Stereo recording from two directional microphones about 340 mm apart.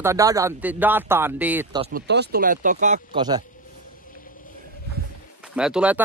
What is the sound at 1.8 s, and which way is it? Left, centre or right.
Speech, right.